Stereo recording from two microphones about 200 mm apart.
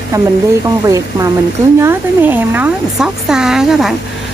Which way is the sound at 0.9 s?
15° right (ahead or behind).